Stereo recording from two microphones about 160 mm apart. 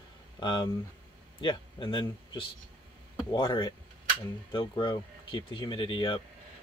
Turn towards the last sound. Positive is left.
turn(degrees=30)  # may be behind; listen again after turning